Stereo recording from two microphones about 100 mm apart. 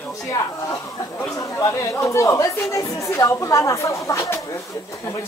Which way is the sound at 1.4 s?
35° left (ahead or behind).